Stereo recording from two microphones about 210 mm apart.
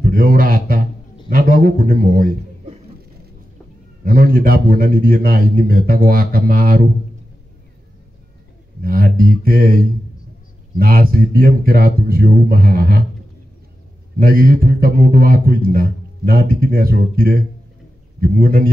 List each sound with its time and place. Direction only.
0.0 s a man's voice: 40° right (ahead or behind)
4.0 s a man's voice: 45° right (ahead or behind)
8.8 s a man's voice: 45° right (ahead or behind)
10.8 s a man's voice: 45° right (ahead or behind)
14.2 s a man's voice: 45° right (ahead or behind)